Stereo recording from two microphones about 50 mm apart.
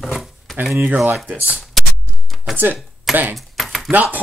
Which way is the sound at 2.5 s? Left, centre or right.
Right.